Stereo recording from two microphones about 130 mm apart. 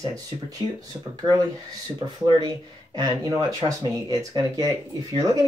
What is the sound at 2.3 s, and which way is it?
Speech, 30° right (ahead or behind).